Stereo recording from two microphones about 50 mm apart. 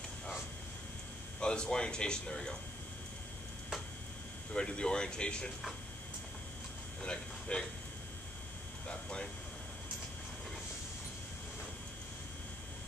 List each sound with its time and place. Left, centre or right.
1.4 s speech: centre
4.6 s speech: centre
7.0 s speech: centre
8.8 s air conditioning: centre